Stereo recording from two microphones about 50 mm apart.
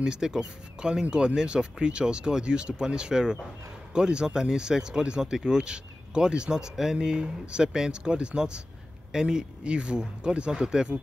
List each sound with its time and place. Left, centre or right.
0.0 s speech: centre